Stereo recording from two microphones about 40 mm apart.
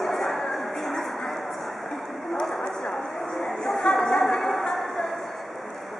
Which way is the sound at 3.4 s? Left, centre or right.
Centre.